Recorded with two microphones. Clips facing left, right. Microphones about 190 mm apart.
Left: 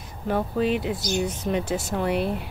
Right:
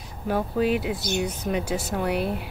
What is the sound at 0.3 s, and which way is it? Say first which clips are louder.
Speech: even; 5° right (ahead or behind).